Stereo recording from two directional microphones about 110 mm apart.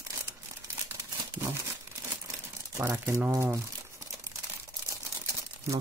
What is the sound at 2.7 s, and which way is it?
Speech, 25° right (ahead or behind).